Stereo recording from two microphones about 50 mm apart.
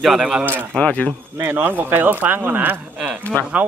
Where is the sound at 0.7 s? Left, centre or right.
Left.